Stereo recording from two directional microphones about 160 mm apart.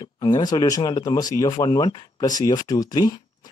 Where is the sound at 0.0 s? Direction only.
25° left (ahead or behind).